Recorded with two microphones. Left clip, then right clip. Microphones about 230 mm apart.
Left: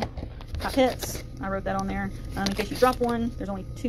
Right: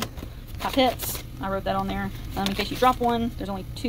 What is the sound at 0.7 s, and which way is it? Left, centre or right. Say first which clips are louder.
Speech: right 1 dB; centre.